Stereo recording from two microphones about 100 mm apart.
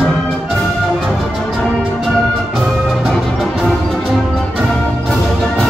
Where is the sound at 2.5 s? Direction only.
5° right (ahead or behind).